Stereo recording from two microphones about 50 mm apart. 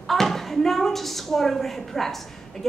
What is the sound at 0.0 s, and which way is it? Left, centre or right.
A woman's voice, centre.